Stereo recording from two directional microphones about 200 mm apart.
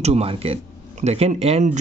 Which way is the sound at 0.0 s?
30° right (ahead or behind).